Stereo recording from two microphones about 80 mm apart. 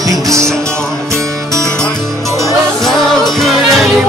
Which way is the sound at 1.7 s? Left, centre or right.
Centre.